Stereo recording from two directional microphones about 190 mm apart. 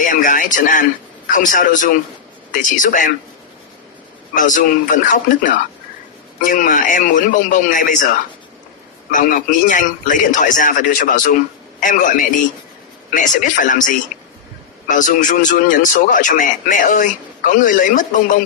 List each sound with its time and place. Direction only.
0.0 s speech: 45° left (ahead or behind)
4.4 s speech: 45° left (ahead or behind)
9.1 s speech: 45° left (ahead or behind)